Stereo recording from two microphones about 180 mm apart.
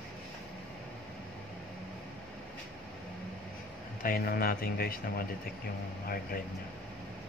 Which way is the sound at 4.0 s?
55° left (ahead or behind).